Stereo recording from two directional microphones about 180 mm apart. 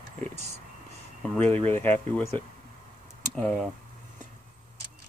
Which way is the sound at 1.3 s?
10° left (ahead or behind).